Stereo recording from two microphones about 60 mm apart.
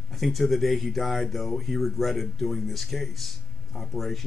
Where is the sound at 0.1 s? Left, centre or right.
Centre.